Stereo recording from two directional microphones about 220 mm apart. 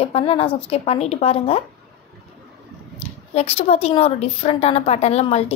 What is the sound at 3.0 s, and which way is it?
Speech, 30° left (ahead or behind).